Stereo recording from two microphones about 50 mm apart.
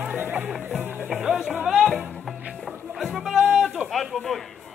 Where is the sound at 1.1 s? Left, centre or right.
Centre.